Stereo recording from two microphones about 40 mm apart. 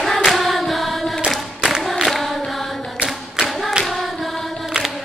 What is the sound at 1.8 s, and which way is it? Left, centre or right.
Singing, centre.